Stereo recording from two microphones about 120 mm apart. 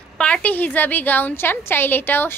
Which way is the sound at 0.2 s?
10° left (ahead or behind).